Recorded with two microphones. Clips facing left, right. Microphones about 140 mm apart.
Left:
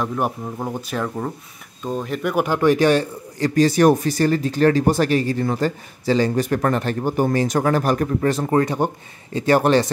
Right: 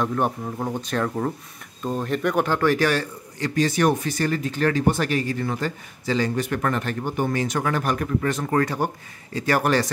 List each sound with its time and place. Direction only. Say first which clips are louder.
0.0 s speech: even; 5° left (ahead or behind)
3.3 s speech: left 6 dB; 35° left (ahead or behind)